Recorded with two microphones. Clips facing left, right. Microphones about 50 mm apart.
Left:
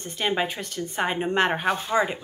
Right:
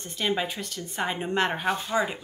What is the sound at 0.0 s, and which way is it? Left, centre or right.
Speech, left.